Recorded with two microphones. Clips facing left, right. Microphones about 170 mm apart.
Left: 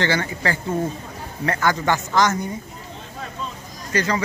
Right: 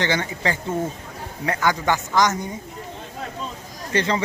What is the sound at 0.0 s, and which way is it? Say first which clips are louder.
Speech: left 1 dB; 20° right (ahead or behind).